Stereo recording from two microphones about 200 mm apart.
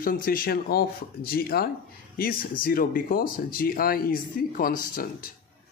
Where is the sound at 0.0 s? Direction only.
45° left (ahead or behind).